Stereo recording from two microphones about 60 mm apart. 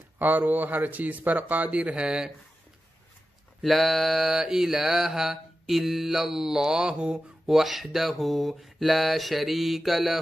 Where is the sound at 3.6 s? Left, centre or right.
Centre.